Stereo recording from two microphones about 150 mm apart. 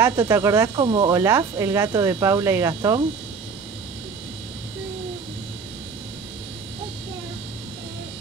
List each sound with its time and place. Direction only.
0.0 s speech: 20° right (ahead or behind)
0.7 s speech: 30° right (ahead or behind)